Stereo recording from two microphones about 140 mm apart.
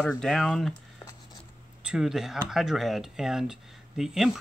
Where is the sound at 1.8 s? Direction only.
5° right (ahead or behind).